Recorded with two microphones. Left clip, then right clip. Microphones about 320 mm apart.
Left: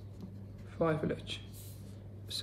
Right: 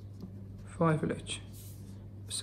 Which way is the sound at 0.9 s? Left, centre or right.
Centre.